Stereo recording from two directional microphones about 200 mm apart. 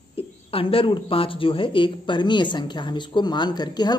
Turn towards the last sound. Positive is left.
turn(degrees=20)  # may be behind; listen again after turning